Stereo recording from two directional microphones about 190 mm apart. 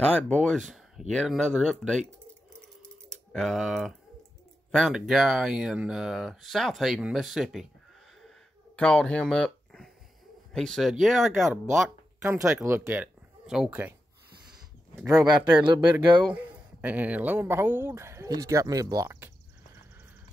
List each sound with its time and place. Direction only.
0.0 s speech: 5° left (ahead or behind)
3.1 s speech: centre (ahead or behind)
8.7 s speech: 5° left (ahead or behind)
12.2 s speech: 15° right (ahead or behind)
15.1 s speech: 20° right (ahead or behind)
16.3 s speech: 10° right (ahead or behind)